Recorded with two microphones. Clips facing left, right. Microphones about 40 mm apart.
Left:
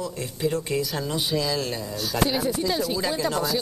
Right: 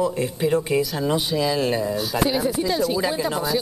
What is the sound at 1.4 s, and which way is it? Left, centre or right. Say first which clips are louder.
Speech: right 6 dB; right.